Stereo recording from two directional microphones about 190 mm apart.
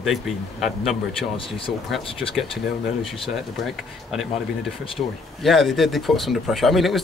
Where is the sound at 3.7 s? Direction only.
Centre (ahead or behind).